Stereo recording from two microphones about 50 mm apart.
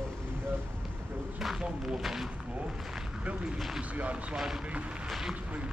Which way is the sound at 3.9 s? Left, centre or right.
Right.